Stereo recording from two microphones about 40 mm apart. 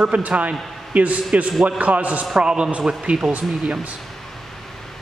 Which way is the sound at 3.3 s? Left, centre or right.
Right.